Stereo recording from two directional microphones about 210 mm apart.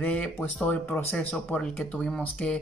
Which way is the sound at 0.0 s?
5° left (ahead or behind).